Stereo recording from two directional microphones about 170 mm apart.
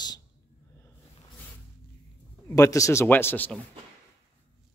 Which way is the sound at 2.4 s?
20° left (ahead or behind).